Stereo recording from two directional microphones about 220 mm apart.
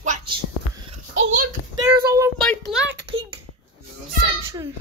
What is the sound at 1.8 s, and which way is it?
Child singing, 15° right (ahead or behind).